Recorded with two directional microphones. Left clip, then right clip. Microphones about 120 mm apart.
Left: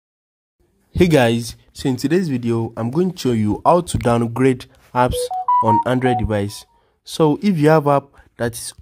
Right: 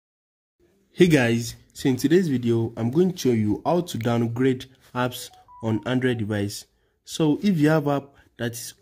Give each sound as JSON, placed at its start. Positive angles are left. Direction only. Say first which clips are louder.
{"t": 0.9, "sound": "speech", "louder": "left 5 dB", "side_deg": 50}
{"t": 3.3, "sound": "speech", "louder": "left 4 dB", "side_deg": 70}
{"t": 3.6, "sound": "speech", "louder": "left 13 dB", "side_deg": 50}